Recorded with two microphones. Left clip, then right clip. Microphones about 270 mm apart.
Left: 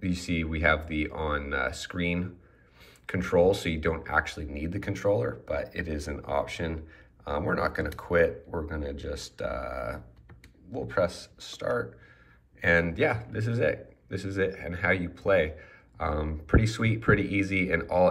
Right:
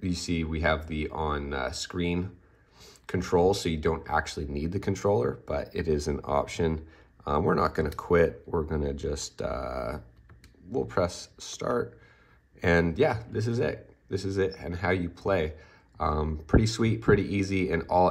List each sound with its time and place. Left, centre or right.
0.0 s speech: centre